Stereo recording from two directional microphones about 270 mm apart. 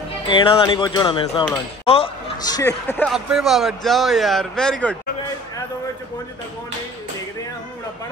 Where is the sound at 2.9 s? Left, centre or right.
Centre.